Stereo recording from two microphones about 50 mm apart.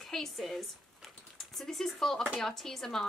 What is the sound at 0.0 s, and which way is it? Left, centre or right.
A woman's voice, centre.